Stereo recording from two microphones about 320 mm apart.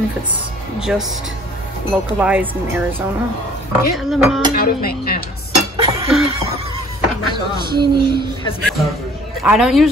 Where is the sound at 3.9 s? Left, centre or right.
Centre.